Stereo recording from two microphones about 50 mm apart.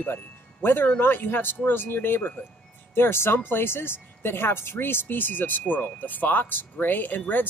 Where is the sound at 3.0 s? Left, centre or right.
Left.